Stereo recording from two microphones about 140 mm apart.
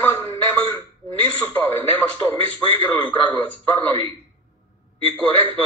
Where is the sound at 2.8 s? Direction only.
10° left (ahead or behind).